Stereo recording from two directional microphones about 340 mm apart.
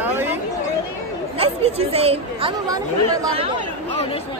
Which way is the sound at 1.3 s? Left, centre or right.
Centre.